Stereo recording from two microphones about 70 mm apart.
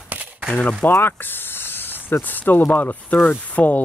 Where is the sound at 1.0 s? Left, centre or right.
Left.